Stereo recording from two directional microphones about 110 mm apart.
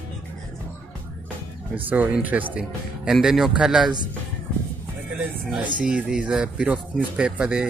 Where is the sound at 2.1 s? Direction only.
15° right (ahead or behind).